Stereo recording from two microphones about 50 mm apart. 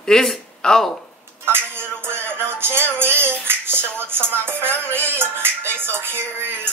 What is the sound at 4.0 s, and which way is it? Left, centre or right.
Music, right.